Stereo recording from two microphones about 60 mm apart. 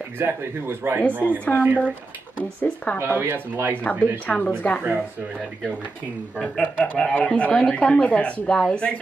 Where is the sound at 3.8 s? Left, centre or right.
Left.